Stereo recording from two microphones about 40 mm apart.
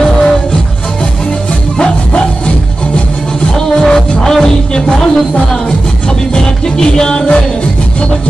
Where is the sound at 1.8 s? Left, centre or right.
Left.